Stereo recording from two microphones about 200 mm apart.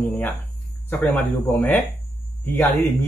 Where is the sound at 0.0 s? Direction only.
10° left (ahead or behind).